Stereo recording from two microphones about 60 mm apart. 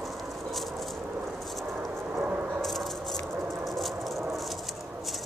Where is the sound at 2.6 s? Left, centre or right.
Centre.